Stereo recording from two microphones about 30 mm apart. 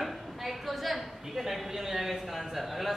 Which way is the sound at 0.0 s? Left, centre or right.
Centre.